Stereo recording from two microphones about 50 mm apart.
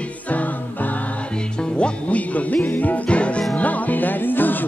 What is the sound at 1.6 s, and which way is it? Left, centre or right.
Music, left.